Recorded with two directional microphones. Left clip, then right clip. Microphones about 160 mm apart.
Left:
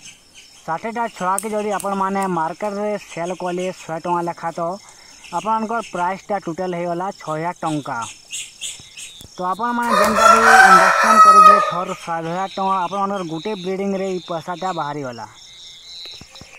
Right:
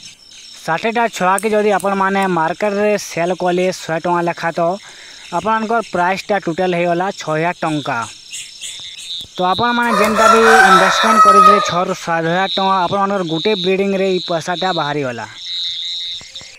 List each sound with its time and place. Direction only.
0.7 s speech: 40° right (ahead or behind)
9.4 s speech: 50° right (ahead or behind)
9.8 s chicken: centre (ahead or behind)
11.7 s speech: 45° right (ahead or behind)